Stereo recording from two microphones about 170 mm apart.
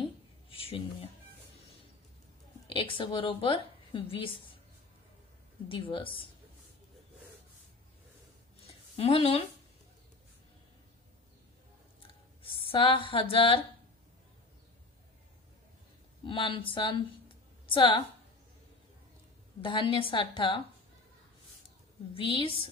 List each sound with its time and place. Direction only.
0.5 s a sound: 35° left (ahead or behind)
2.7 s a woman's voice: 30° left (ahead or behind)
5.7 s a woman's voice: 30° left (ahead or behind)
8.9 s a woman's voice: 35° left (ahead or behind)
12.6 s a woman's voice: 30° left (ahead or behind)
16.3 s a woman's voice: 30° left (ahead or behind)
19.6 s a woman's voice: 30° left (ahead or behind)
22.1 s a woman's voice: 30° left (ahead or behind)